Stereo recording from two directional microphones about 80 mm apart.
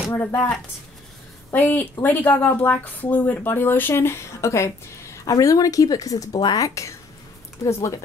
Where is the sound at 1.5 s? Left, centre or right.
Left.